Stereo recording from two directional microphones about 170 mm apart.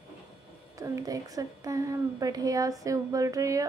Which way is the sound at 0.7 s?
20° right (ahead or behind).